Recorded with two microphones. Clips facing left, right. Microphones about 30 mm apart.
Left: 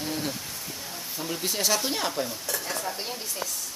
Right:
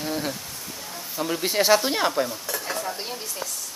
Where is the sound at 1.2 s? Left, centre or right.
Right.